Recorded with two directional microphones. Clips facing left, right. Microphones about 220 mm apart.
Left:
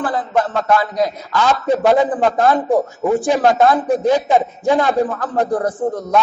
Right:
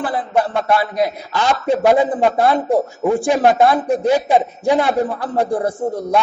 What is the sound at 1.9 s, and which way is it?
A man's voice, 10° right (ahead or behind).